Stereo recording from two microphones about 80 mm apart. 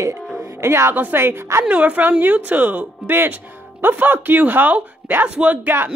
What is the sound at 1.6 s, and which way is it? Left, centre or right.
Speech, centre.